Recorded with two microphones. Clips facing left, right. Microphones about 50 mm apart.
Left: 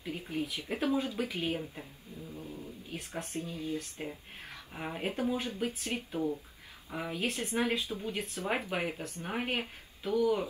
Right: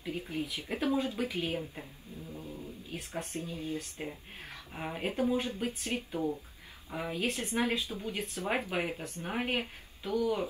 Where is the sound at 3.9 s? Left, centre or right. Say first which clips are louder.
Even; centre.